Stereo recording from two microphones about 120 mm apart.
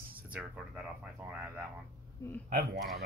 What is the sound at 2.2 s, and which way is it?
Speech, 25° left (ahead or behind).